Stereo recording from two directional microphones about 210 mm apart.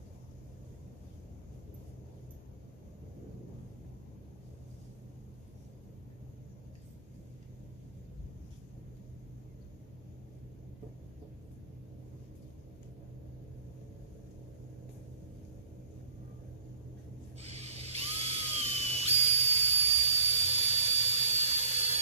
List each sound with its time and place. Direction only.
17.4 s dental drill: 30° right (ahead or behind)